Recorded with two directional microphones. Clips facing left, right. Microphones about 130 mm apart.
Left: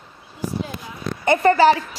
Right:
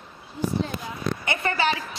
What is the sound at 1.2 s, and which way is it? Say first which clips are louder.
Speech: left 13 dB; 40° left (ahead or behind).